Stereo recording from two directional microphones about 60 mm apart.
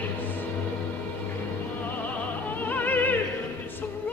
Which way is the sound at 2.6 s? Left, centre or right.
Left.